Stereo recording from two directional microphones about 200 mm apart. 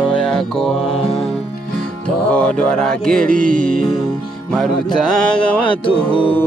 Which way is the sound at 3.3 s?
45° right (ahead or behind).